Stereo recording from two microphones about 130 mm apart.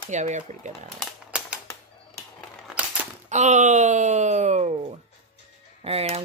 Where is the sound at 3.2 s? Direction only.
65° right (ahead or behind).